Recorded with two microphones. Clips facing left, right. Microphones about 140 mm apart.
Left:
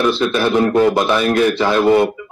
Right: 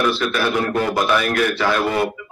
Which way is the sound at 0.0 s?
25° left (ahead or behind).